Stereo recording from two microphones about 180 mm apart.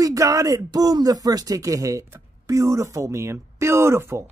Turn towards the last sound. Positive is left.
turn(degrees=-15)  # may be behind; listen again after turning